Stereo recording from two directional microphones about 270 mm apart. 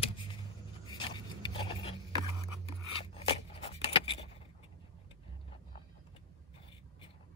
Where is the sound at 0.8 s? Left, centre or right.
Centre.